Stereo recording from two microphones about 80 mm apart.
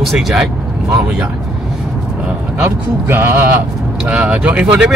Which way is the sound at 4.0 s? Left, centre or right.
Centre.